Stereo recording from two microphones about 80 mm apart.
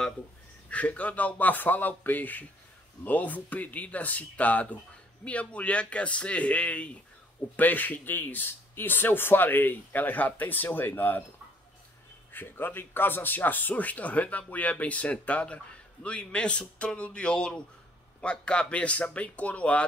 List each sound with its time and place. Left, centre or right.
0.7 s a man's voice: centre
12.3 s a man's voice: left